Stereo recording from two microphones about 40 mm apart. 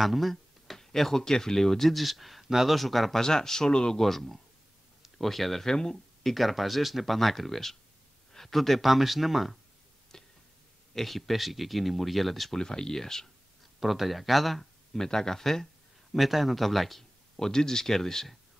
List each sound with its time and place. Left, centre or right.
0.0 s speech: centre
3.2 s speech: centre
4.0 s speech: centre
5.7 s speech: centre
6.3 s speech: centre
10.1 s a sound: centre
11.0 s speech: centre
12.5 s speech: centre
13.7 s speech: centre
15.0 s speech: centre
17.4 s speech: centre